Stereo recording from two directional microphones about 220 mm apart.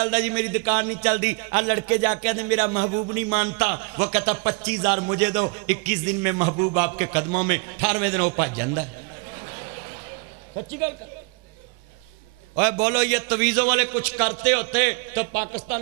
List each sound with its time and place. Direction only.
0.0 s a man's voice: 15° right (ahead or behind)
9.3 s a sound: 20° right (ahead or behind)
12.5 s a man's voice: 15° right (ahead or behind)